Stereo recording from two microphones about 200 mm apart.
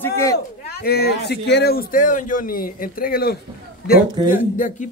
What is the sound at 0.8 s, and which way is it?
A man's voice, 55° left (ahead or behind).